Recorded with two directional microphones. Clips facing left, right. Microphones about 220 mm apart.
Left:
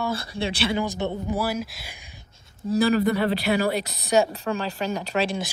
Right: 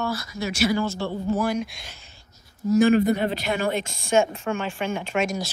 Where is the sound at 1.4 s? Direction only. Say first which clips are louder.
Right 2 dB; 5° left (ahead or behind).